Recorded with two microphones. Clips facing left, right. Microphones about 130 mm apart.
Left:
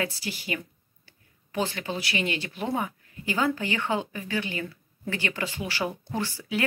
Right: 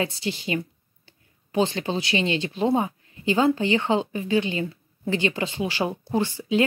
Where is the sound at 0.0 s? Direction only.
25° right (ahead or behind).